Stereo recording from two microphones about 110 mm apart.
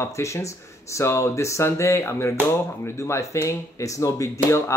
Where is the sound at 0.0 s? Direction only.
25° left (ahead or behind).